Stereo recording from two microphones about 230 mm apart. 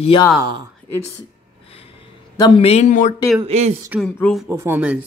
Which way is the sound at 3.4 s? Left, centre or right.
Right.